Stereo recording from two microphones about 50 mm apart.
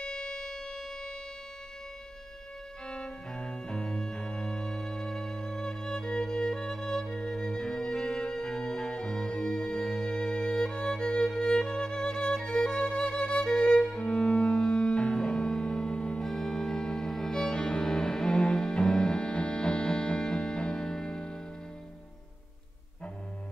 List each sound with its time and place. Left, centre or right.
0.0 s siren: centre
3.4 s music: centre
13.7 s music: centre
16.2 s music: centre